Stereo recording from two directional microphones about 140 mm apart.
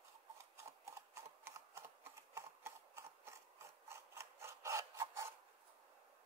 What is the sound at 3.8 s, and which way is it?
Rub, 20° right (ahead or behind).